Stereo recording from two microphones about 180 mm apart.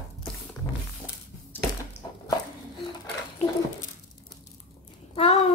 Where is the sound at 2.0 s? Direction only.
20° left (ahead or behind).